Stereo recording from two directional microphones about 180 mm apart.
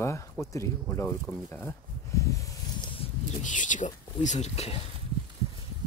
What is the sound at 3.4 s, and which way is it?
Speech, 45° left (ahead or behind).